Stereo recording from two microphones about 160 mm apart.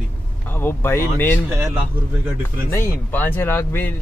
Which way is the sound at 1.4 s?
15° right (ahead or behind).